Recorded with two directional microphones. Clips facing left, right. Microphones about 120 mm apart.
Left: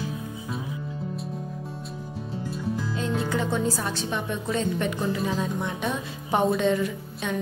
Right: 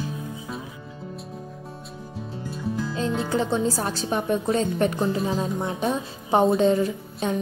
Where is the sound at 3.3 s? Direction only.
30° right (ahead or behind).